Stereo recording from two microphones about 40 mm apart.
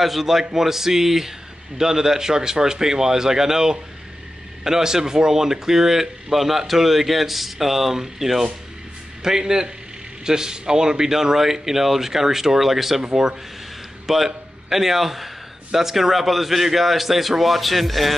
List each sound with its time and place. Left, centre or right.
0.0 s a man's voice: centre
13.0 s speech: centre
14.0 s a man's voice: centre